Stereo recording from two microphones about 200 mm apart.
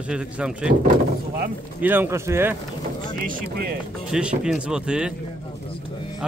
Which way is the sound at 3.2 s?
45° right (ahead or behind).